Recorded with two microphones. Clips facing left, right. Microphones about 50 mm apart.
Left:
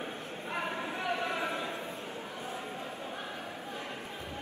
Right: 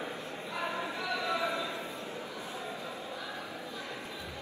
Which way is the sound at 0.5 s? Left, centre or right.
Left.